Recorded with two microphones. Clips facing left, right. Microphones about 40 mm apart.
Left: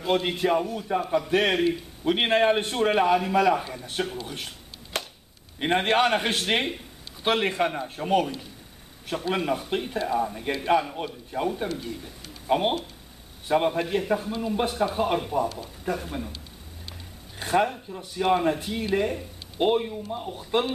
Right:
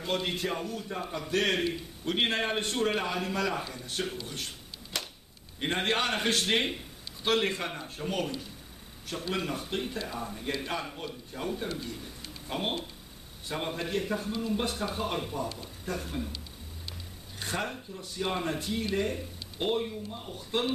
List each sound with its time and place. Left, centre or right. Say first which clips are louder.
0.0 s speech: left 7 dB; centre
4.9 s a sound: left 5 dB; left
5.6 s a man's voice: left 7 dB; left
17.4 s speech: left 10 dB; left